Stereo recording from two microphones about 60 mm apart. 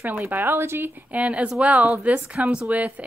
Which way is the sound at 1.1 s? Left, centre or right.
Right.